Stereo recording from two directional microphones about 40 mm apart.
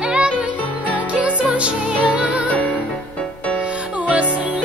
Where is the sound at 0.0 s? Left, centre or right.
Right.